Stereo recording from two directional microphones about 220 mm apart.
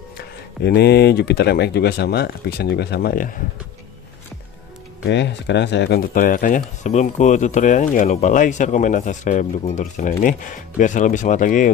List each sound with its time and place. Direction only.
0.7 s speech: 50° left (ahead or behind)
5.0 s speech: 50° left (ahead or behind); by 11.7 s 35° left (ahead or behind)